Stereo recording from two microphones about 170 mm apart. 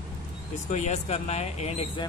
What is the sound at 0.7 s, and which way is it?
Speech, 40° left (ahead or behind).